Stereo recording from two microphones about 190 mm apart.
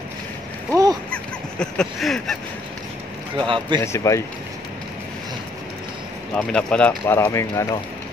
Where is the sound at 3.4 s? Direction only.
25° right (ahead or behind).